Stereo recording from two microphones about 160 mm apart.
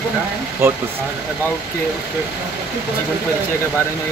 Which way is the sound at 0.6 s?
15° right (ahead or behind).